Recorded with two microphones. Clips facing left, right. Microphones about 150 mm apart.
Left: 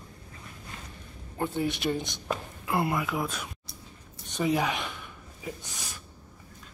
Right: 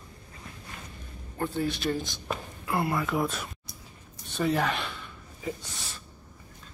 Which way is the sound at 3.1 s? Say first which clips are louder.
Right 3 dB; centre (ahead or behind).